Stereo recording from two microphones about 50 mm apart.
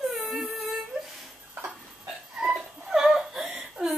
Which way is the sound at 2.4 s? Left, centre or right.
Centre.